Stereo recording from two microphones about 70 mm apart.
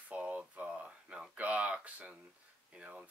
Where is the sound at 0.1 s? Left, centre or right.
Right.